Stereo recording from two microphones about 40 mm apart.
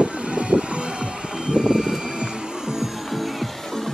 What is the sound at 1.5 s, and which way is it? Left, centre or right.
Music, centre.